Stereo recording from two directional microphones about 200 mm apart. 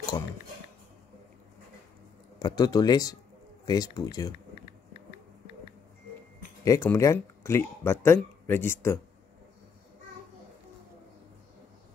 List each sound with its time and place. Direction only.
2.3 s speech: 20° left (ahead or behind)
6.6 s speech: 15° left (ahead or behind)